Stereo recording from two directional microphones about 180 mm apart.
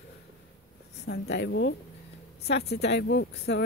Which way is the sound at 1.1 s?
70° left (ahead or behind).